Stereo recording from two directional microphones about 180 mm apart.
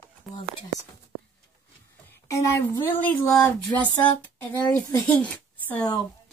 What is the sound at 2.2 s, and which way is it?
A woman's voice, 15° left (ahead or behind).